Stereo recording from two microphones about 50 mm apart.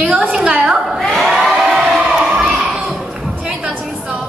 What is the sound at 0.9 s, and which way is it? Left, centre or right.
Crowd, centre.